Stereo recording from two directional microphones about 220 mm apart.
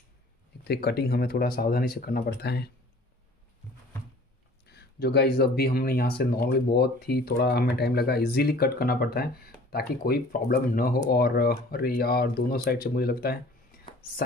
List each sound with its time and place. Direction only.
0.7 s speech: 45° left (ahead or behind)
4.6 s speech: 45° left (ahead or behind)